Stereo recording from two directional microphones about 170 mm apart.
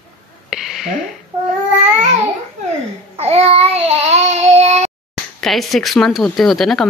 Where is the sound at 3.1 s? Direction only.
35° right (ahead or behind).